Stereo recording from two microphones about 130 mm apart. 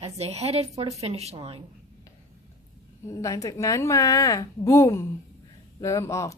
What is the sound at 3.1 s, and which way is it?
A woman's voice, 25° left (ahead or behind).